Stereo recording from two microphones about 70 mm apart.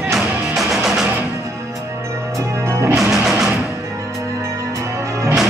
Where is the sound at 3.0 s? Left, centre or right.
Centre.